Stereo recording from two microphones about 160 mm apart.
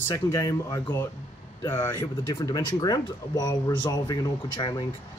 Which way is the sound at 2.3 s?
25° left (ahead or behind).